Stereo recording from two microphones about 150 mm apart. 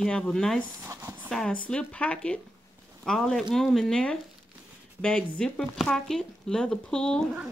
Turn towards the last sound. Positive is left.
turn(degrees=5)  # may be behind; listen again after turning